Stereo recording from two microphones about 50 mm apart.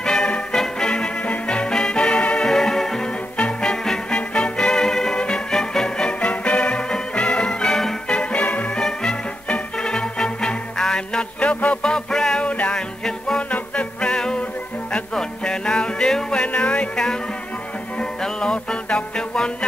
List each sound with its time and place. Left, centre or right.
0.0 s music: centre
2.4 s music: centre
3.3 s music: left
3.8 s music: centre
8.2 s music: left
8.7 s music: centre
12.4 s music: left
16.5 s music: left
18.2 s music: centre